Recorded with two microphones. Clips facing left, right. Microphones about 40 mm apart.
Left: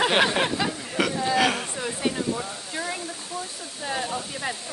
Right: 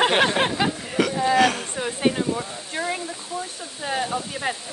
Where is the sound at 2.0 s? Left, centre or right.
Right.